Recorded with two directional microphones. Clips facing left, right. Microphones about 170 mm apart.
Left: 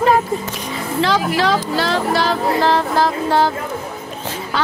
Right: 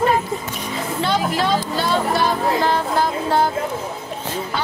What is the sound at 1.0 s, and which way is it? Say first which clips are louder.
Speech: left 3 dB; 90° left.